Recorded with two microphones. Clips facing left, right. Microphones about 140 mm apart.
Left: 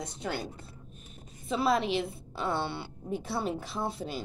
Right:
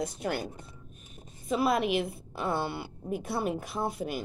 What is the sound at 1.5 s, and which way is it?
Speech, centre (ahead or behind).